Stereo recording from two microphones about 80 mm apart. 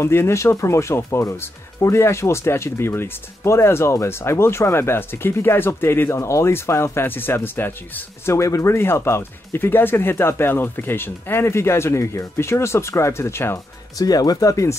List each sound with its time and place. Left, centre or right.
0.0 s speech: left
8.4 s speech: left
13.9 s speech: left